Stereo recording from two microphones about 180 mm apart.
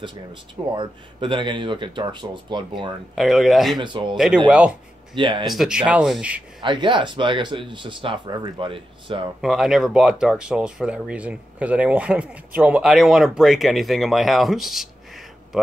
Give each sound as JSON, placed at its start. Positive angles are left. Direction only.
{"t": 0.0, "sound": "speech", "side_deg": -25}
{"t": 3.2, "sound": "speech", "side_deg": 0}
{"t": 3.7, "sound": "speech", "side_deg": -25}
{"t": 4.5, "sound": "speech", "side_deg": -5}
{"t": 5.1, "sound": "speech", "side_deg": -25}
{"t": 5.5, "sound": "speech", "side_deg": -5}
{"t": 6.6, "sound": "speech", "side_deg": -25}
{"t": 9.4, "sound": "speech", "side_deg": 0}